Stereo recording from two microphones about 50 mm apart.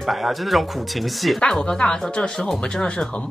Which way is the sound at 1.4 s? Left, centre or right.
Centre.